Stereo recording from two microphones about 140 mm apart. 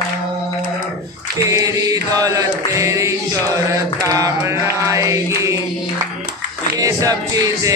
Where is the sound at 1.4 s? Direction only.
25° right (ahead or behind).